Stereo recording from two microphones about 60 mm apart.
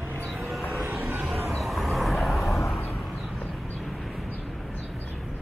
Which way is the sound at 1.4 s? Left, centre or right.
Centre.